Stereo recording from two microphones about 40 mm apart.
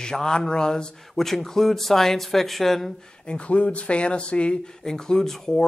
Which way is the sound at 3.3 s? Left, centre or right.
Left.